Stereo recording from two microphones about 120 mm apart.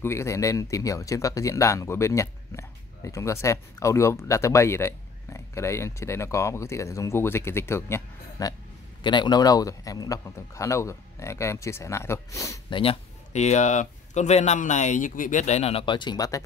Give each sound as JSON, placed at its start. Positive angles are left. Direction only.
{"t": 0.0, "sound": "speech", "side_deg": 20}
{"t": 9.0, "sound": "speech", "side_deg": 40}
{"t": 12.6, "sound": "speech", "side_deg": 45}
{"t": 13.3, "sound": "speech", "side_deg": 70}
{"t": 15.8, "sound": "speech", "side_deg": 40}